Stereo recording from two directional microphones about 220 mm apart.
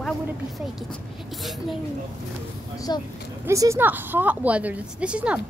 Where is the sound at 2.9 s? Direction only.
20° left (ahead or behind).